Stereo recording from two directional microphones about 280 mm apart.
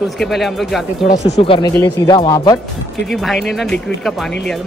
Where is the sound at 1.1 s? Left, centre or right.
Left.